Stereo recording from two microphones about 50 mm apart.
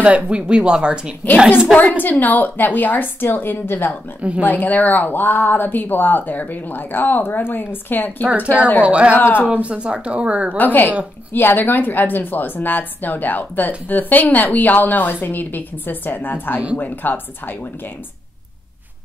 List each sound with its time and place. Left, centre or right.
0.0 s speech: right
2.0 s a woman's voice: left
4.2 s speech: right
4.5 s a woman's voice: left
8.8 s speech: right
9.1 s speech: left
9.5 s speech: right
10.6 s a woman's voice: left